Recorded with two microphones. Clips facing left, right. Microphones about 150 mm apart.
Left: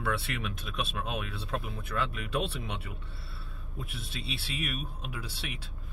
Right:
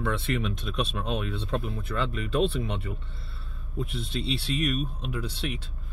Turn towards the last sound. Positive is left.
turn(degrees=5)  # may be behind; listen again after turning